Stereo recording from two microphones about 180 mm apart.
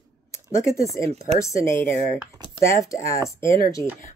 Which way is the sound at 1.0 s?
15° left (ahead or behind).